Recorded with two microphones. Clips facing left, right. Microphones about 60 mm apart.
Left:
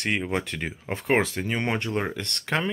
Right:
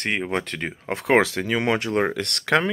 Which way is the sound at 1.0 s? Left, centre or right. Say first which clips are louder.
Right 5 dB; right.